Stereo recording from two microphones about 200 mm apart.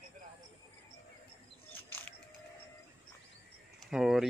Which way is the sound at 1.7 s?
10° left (ahead or behind).